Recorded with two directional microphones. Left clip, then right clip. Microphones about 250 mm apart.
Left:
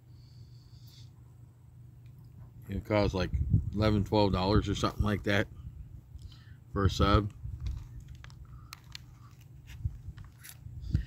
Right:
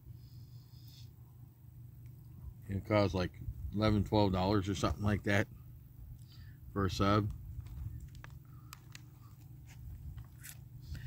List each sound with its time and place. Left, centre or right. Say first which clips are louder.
2.6 s speech: left 2 dB; centre
6.7 s speech: left 4 dB; centre
10.4 s a sound: left 2 dB; centre